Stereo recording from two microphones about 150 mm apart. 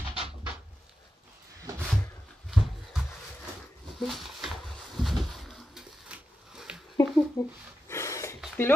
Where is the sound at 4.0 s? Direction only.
Centre (ahead or behind).